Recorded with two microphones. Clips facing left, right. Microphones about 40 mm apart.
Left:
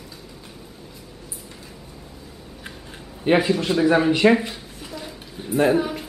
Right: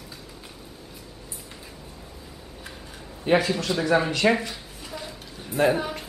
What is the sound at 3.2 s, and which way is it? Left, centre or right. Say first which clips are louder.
A man's voice: left 3 dB; centre.